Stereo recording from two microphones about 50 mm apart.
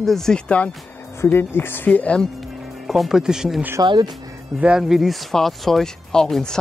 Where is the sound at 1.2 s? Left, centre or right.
Left.